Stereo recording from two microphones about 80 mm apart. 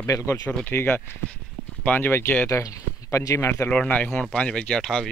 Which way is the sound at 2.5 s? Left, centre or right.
Left.